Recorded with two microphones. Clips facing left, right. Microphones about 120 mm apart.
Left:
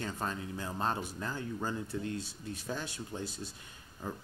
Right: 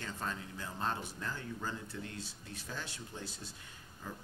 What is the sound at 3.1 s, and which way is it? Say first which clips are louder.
Speech: left 6 dB; 45° left (ahead or behind).